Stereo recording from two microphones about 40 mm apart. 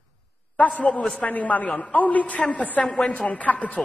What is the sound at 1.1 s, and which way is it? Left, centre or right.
A woman's voice, left.